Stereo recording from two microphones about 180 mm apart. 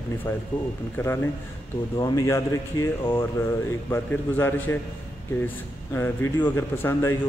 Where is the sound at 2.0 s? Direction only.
20° left (ahead or behind).